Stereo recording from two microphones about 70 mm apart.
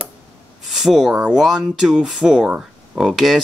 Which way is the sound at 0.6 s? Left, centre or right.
Centre.